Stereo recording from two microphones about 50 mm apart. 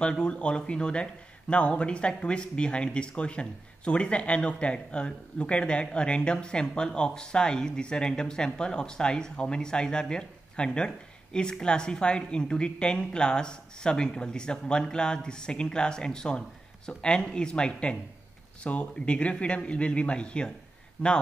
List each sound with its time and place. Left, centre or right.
0.0 s a woman's voice: centre